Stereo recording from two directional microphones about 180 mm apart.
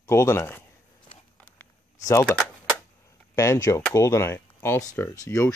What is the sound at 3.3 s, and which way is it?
Speech, 20° left (ahead or behind).